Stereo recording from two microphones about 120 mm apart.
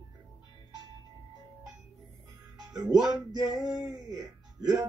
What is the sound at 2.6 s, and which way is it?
Music, 35° right (ahead or behind).